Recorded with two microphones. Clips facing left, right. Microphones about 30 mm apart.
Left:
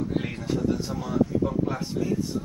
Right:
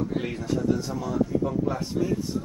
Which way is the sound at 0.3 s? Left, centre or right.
Centre.